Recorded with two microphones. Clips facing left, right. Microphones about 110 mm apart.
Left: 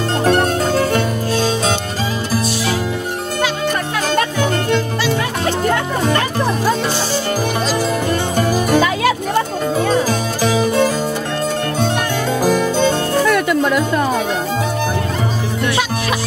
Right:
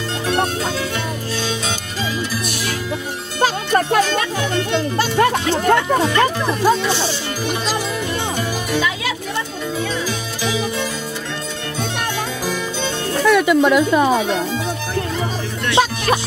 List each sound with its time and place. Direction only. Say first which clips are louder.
0.2 s music: left 5 dB; 50° left (ahead or behind)
3.3 s music: right 3 dB; 40° right (ahead or behind)
4.1 s music: left 3 dB; 45° left (ahead or behind)
8.4 s music: left 9 dB; 45° left (ahead or behind)
13.3 s music: right 6 dB; 5° right (ahead or behind)
15.7 s music: right 7 dB; 35° right (ahead or behind)